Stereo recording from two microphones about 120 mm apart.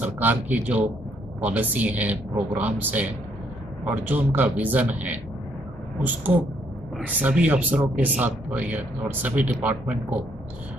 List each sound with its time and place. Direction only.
0.0 s speech: 15° right (ahead or behind)
7.0 s speech: 10° right (ahead or behind)